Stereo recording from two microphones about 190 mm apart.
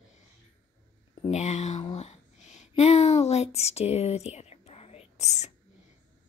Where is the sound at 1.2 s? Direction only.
35° left (ahead or behind).